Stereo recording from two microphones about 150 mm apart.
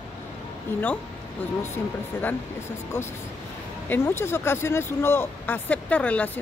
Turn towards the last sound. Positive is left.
turn(degrees=10)  # may be behind; listen again after turning